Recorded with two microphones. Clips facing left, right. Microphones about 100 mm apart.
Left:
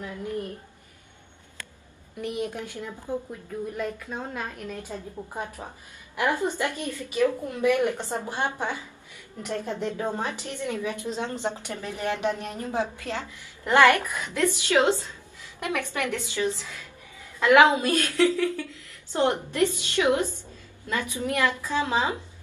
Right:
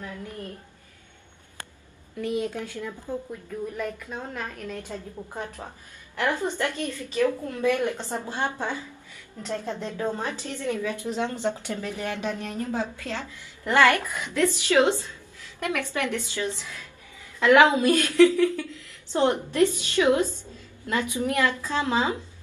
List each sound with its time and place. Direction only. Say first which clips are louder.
2.1 s a woman's voice: right 3 dB; 20° left (ahead or behind)
15.0 s a sound: right 1 dB; 15° left (ahead or behind)
15.9 s a woman's voice: right 1 dB; 15° left (ahead or behind)
17.8 s a woman's voice: right 4 dB; 15° right (ahead or behind)
18.1 s a woman's voice: right 6 dB; 20° left (ahead or behind)
19.6 s a woman's voice: right 2 dB; 20° left (ahead or behind)
21.1 s a woman's voice: right 2 dB; 20° right (ahead or behind)
21.4 s a woman's voice: left 1 dB; 15° left (ahead or behind)